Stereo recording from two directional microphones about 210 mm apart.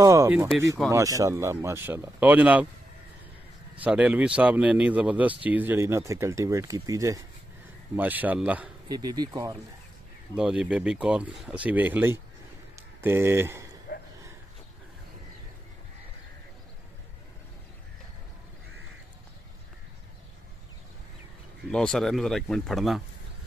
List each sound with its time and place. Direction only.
0.0 s speech: 15° right (ahead or behind)
3.8 s speech: 5° right (ahead or behind)
8.8 s speech: 20° right (ahead or behind)
10.3 s speech: 5° right (ahead or behind)
12.7 s a sound: 10° right (ahead or behind)
13.9 s a sound: 45° left (ahead or behind)
21.6 s speech: 5° left (ahead or behind)